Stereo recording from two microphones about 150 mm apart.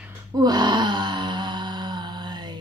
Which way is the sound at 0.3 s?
25° right (ahead or behind).